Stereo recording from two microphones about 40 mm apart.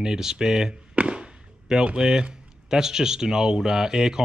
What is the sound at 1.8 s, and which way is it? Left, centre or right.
Speech, right.